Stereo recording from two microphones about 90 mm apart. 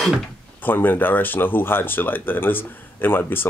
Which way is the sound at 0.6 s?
20° left (ahead or behind).